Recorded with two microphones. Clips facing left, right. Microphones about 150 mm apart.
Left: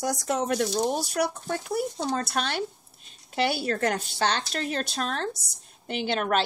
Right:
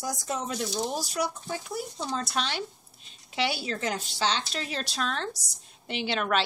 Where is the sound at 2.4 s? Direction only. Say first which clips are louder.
Left 3 dB; 50° left (ahead or behind).